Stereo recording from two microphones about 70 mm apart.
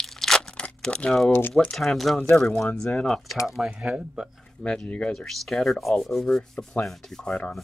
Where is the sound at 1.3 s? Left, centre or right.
Left.